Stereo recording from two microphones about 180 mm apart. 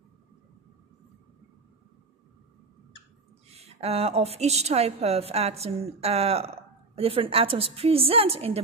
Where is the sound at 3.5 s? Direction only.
35° right (ahead or behind).